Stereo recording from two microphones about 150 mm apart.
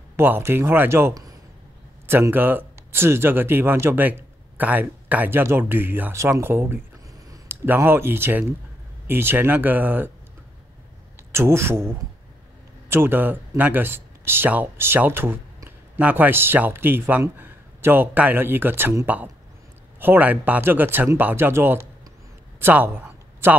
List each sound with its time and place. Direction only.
0.1 s speech: 15° right (ahead or behind)
11.3 s speech: 15° right (ahead or behind)
12.9 s speech: 15° right (ahead or behind)
22.6 s a sound: 10° right (ahead or behind)